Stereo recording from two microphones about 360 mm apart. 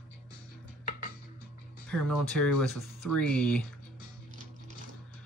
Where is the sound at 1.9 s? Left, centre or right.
Centre.